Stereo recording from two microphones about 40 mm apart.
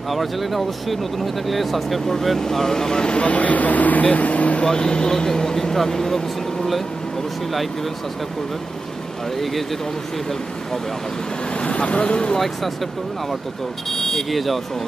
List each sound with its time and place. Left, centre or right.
0.1 s speech: centre; by 3.3 s left
3.3 s speech: left
4.6 s speech: centre
9.4 s speech: centre
11.5 s speech: left
13.8 s speech: centre